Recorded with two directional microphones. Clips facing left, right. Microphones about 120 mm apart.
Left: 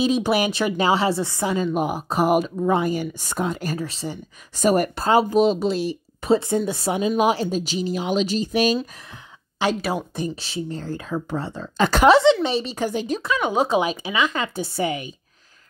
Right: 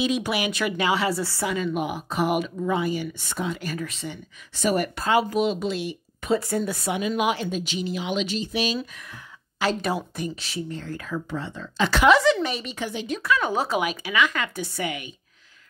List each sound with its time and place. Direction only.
0.0 s a woman's voice: 35° left (ahead or behind)
1.2 s a woman's voice: 20° left (ahead or behind)
1.5 s a woman's voice: 35° left (ahead or behind)
9.6 s a woman's voice: 25° left (ahead or behind)
11.2 s a woman's voice: 40° left (ahead or behind)
12.1 s a woman's voice: 25° left (ahead or behind); by 13.2 s 40° left (ahead or behind)
13.2 s a woman's voice: 20° left (ahead or behind)